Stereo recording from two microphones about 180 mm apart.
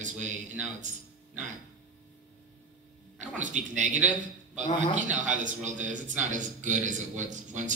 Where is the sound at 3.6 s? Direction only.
40° right (ahead or behind).